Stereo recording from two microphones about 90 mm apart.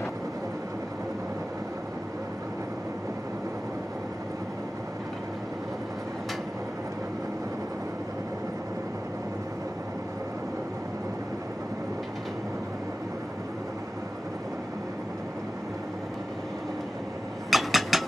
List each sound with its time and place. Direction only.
17.5 s mechanisms: centre (ahead or behind)